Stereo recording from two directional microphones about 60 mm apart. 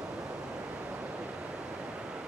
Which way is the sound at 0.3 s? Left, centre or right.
Right.